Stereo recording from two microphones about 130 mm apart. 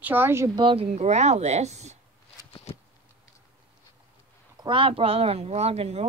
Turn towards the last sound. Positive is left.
turn(degrees=-50)  # may be behind; listen again after turning